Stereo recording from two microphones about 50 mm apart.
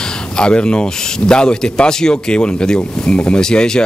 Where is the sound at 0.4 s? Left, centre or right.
Centre.